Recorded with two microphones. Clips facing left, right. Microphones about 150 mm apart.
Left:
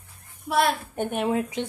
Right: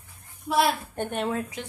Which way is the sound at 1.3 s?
20° left (ahead or behind).